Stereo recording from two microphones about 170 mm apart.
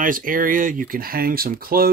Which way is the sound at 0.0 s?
55° right (ahead or behind).